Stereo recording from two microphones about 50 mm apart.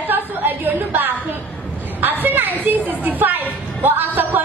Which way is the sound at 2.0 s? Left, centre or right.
Right.